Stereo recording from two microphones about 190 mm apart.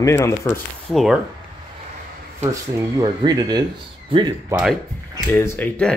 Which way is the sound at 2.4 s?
15° right (ahead or behind).